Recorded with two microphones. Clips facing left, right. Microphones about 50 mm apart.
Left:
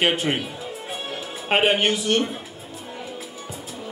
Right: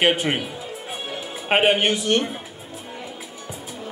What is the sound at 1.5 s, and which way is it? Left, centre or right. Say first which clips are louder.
Speech: right 1 dB; centre.